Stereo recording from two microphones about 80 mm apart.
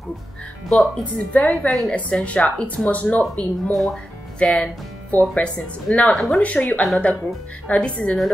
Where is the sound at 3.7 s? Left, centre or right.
Centre.